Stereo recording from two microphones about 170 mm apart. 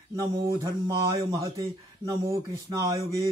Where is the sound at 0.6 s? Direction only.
20° right (ahead or behind).